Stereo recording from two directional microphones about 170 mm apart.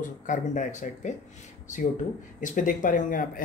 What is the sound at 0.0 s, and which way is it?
Speech, 50° left (ahead or behind).